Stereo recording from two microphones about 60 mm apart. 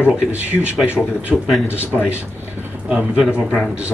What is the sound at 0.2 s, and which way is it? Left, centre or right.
Speech, right.